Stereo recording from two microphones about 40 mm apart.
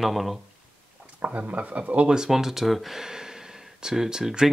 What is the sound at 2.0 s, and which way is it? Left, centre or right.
Speech, centre.